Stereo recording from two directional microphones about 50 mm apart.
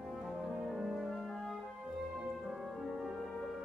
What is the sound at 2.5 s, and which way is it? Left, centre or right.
Music, centre.